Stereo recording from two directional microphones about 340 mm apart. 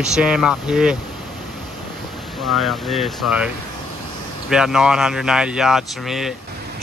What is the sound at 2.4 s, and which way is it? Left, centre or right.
Speech, centre.